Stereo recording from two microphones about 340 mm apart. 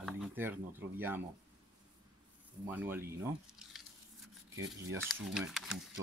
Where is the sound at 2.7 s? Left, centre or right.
Centre.